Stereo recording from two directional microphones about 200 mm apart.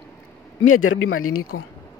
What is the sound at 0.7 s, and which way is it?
Speech, 90° left.